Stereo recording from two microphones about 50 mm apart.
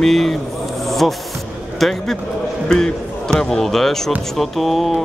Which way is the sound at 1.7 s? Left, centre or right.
Centre.